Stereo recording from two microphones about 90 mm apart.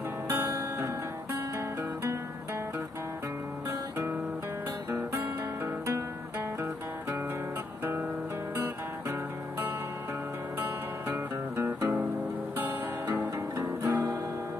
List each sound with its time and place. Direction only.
0.3 s music: 25° right (ahead or behind)
4.9 s music: 25° right (ahead or behind)
11.1 s music: 25° right (ahead or behind)